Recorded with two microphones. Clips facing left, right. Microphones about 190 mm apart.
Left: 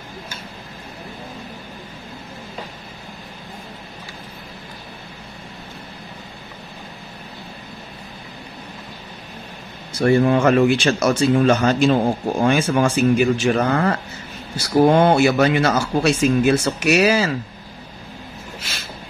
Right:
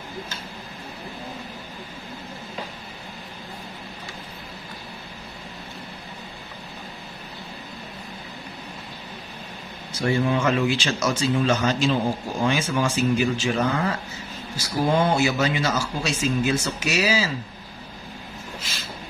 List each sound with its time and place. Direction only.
9.9 s speech: 55° left (ahead or behind)